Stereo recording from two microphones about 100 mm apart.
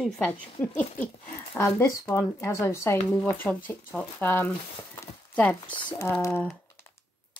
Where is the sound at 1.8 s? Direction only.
30° left (ahead or behind); by 5.6 s 10° left (ahead or behind).